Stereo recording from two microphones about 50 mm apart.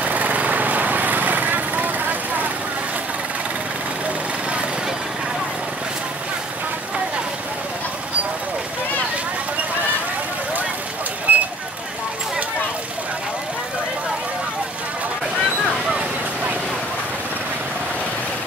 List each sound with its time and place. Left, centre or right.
0.0 s vehicle: right
11.3 s vehicle: right